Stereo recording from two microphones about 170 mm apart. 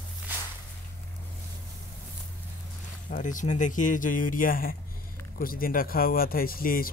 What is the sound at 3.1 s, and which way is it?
Speech, 50° left (ahead or behind).